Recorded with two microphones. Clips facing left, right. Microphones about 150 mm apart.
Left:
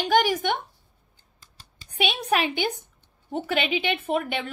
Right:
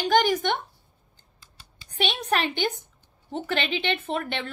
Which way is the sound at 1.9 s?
10° left (ahead or behind).